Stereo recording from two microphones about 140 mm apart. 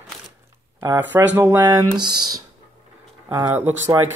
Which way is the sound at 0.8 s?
15° right (ahead or behind).